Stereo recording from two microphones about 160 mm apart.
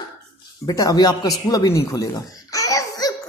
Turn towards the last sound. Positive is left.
turn(degrees=20)  # may be behind; listen again after turning